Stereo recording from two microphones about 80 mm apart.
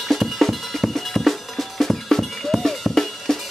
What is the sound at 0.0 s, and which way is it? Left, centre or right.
Music, centre.